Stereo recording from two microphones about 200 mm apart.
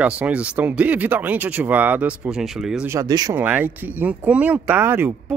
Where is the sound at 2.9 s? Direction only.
15° right (ahead or behind).